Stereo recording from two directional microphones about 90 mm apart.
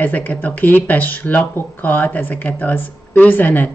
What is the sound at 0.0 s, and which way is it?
Speech, 20° left (ahead or behind).